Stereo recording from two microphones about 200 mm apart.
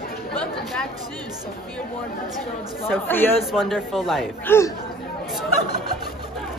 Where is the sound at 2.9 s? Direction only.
10° left (ahead or behind).